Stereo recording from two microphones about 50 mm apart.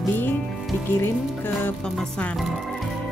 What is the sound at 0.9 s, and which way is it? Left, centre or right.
Speech, left.